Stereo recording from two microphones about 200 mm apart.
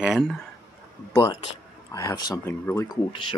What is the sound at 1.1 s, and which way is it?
Speech, 20° left (ahead or behind).